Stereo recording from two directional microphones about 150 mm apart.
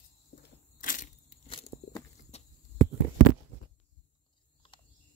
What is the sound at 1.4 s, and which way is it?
Walk, 35° left (ahead or behind).